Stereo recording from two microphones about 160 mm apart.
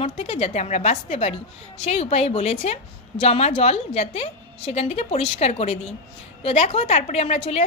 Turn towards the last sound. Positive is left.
turn(degrees=45)  # may be behind; listen again after turning